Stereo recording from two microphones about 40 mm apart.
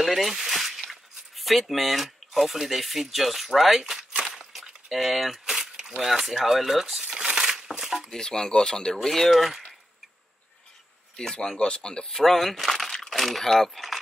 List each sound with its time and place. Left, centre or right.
0.0 s speech: centre
4.2 s a sound: centre
4.9 s speech: centre
5.9 s crumpling: centre
8.1 s speech: centre
11.5 s speech: left
12.2 s speech: centre